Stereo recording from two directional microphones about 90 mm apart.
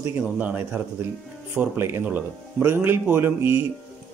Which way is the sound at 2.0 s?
15° right (ahead or behind).